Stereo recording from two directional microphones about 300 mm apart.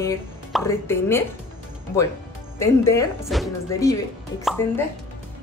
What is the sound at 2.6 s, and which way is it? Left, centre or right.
Speech, centre.